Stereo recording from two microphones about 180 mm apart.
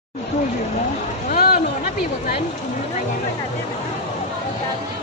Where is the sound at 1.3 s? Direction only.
55° left (ahead or behind).